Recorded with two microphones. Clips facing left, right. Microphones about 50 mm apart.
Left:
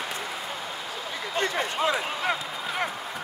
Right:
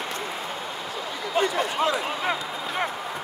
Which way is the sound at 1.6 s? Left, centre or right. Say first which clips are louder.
Right 2 dB; centre.